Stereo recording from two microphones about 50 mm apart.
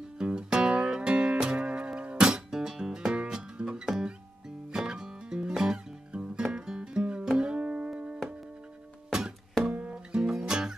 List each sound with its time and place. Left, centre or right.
0.2 s music: centre
9.7 s music: right